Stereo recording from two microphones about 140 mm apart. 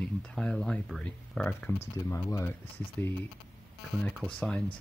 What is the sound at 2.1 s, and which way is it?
Speech, 20° left (ahead or behind).